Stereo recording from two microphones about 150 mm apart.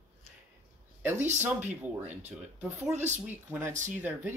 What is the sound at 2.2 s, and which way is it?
Speech, 50° right (ahead or behind).